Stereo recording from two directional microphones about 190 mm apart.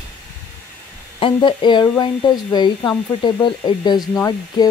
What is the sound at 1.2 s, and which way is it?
Speech, 25° left (ahead or behind).